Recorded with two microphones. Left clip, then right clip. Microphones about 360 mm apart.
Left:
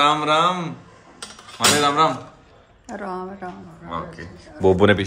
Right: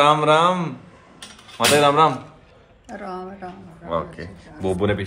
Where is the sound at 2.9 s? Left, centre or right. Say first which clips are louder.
Left 2 dB; centre.